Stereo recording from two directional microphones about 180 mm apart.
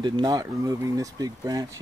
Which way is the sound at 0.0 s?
25° right (ahead or behind).